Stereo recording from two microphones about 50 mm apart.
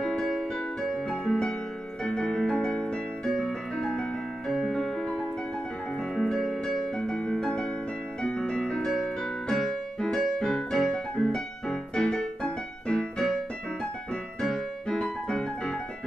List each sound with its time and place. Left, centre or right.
0.0 s music: centre
2.0 s keyboard: centre
3.3 s music: centre
3.7 s piano: centre
4.5 s music: centre
6.2 s music: centre
14.4 s music: centre